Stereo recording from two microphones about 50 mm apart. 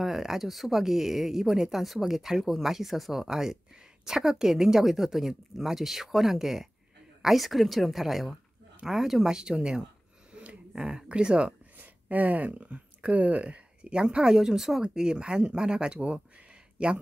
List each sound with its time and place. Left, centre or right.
0.0 s speech: centre
10.3 s a sound: right
10.7 s speech: centre
11.8 s speech: right